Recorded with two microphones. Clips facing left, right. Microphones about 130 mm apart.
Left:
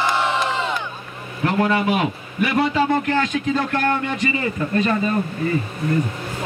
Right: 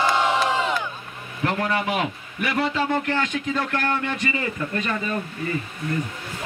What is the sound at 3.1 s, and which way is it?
A man's voice, 25° left (ahead or behind).